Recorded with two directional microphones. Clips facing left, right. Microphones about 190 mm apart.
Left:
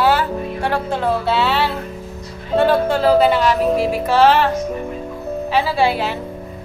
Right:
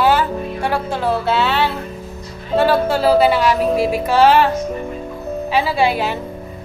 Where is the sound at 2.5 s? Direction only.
5° right (ahead or behind).